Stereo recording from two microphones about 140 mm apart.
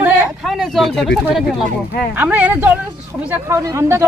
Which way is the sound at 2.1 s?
10° right (ahead or behind).